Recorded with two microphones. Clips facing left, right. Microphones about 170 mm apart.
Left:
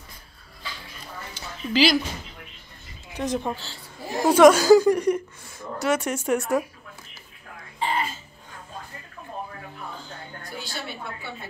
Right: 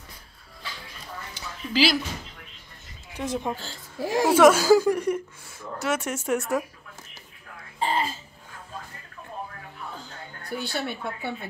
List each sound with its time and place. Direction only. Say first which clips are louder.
1.7 s speech: left 2 dB; 5° right (ahead or behind)
3.2 s speech: left 2 dB; 10° right (ahead or behind)
4.0 s a woman's voice: right 2 dB; 90° right
4.3 s a woman's voice: left 3 dB; 5° right (ahead or behind)
7.8 s a sound: right 1 dB; 35° right (ahead or behind)
10.5 s speech: right 6 dB; 60° right (ahead or behind)